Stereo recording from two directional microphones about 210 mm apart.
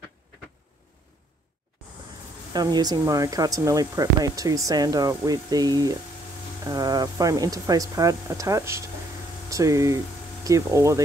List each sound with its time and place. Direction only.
2.5 s speech: 20° right (ahead or behind)